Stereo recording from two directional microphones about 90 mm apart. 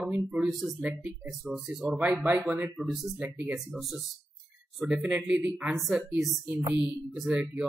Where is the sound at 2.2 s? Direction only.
20° right (ahead or behind).